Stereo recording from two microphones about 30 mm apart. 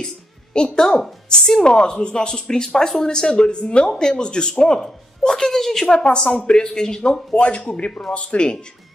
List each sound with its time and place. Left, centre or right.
0.0 s music: left
0.7 s speech: left
4.7 s speech: centre
5.5 s a woman's voice: centre
5.9 s speech: left
7.3 s speech: left